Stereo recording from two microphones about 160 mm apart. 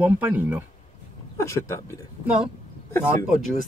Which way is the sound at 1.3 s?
20° left (ahead or behind).